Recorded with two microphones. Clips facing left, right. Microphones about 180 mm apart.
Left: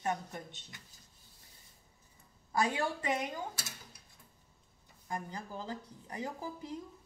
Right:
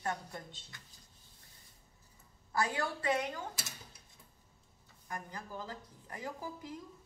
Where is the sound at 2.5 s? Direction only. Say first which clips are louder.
Left 2 dB; 15° left (ahead or behind).